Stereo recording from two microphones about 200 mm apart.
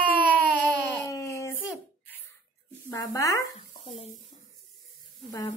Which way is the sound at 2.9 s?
15° left (ahead or behind).